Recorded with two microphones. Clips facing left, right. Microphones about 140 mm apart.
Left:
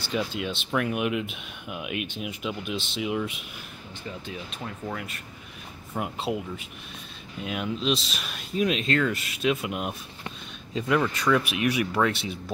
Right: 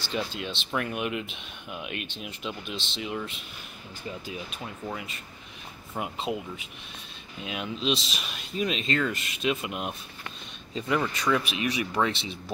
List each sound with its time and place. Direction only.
0.4 s speech: 5° left (ahead or behind)
4.5 s speech: centre (ahead or behind)